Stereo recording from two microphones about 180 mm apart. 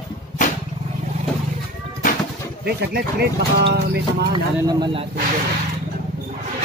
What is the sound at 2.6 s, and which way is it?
Speech, 65° right (ahead or behind).